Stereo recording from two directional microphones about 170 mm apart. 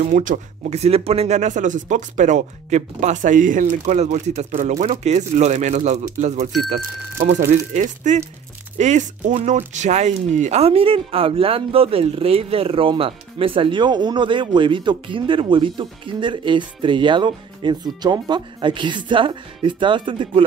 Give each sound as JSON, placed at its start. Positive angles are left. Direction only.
{"t": 0.0, "sound": "speech", "side_deg": -50}
{"t": 7.7, "sound": "speech", "side_deg": -45}